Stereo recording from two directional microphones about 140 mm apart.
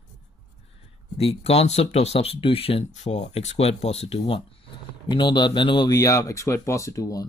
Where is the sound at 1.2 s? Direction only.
45° left (ahead or behind).